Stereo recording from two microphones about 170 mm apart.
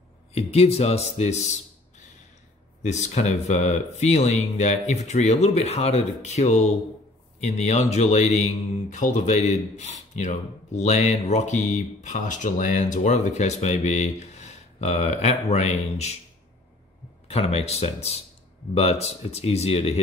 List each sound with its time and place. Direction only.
0.3 s speech: 35° left (ahead or behind)
2.8 s speech: 40° left (ahead or behind)
17.3 s speech: 35° left (ahead or behind)